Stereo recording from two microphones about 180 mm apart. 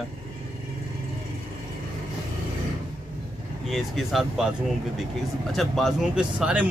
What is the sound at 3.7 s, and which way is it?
Speech, centre (ahead or behind).